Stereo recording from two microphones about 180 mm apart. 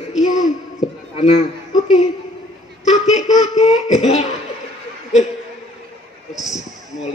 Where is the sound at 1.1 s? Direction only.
40° left (ahead or behind).